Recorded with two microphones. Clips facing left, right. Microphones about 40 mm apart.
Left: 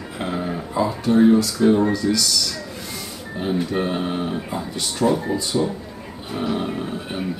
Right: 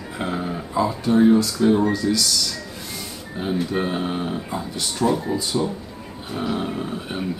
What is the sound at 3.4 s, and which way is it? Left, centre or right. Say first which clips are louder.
Speech: left 1 dB; centre.